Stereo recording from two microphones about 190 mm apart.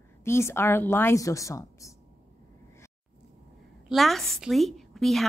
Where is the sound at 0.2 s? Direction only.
15° left (ahead or behind).